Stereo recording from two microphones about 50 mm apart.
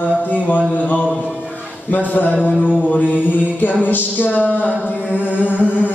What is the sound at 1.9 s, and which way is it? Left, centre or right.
Music, left.